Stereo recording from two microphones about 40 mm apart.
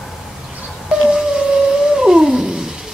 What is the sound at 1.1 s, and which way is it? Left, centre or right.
Howl, centre.